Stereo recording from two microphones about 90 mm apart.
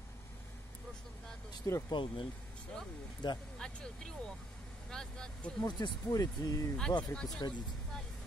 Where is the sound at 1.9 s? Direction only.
65° left (ahead or behind).